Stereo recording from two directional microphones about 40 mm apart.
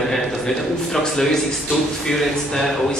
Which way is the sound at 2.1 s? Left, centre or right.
Centre.